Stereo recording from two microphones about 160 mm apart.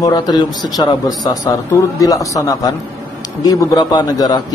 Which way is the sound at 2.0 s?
20° left (ahead or behind).